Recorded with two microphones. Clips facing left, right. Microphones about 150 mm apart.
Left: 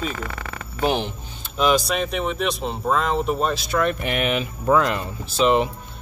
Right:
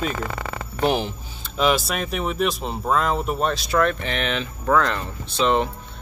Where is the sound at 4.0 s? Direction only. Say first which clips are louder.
Left 3 dB; 10° left (ahead or behind).